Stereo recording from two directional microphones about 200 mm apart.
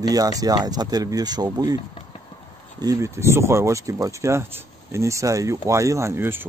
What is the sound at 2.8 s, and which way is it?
Speech, 15° right (ahead or behind).